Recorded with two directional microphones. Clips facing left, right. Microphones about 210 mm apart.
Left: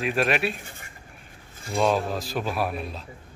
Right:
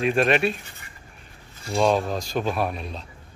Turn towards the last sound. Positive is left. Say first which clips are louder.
# right 1 dB
turn(degrees=5)  # may be behind; listen again after turning